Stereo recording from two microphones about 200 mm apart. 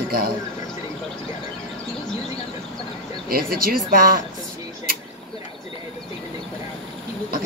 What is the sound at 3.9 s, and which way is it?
Speech, 45° right (ahead or behind).